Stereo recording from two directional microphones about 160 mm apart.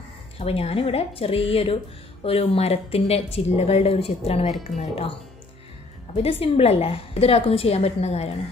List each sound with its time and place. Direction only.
0.4 s speech: 40° left (ahead or behind)
6.1 s speech: 40° left (ahead or behind)